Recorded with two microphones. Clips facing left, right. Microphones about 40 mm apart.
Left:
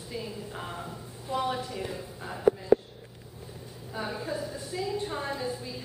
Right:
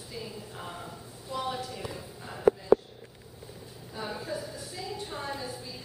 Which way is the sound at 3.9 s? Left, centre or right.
Centre.